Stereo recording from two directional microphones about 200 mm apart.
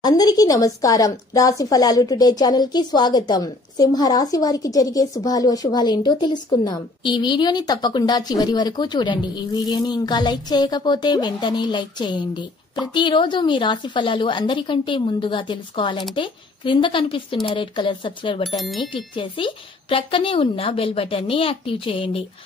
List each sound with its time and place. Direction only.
0.0 s speech: 20° left (ahead or behind)
18.6 s speech: centre (ahead or behind)
19.1 s speech: 25° left (ahead or behind)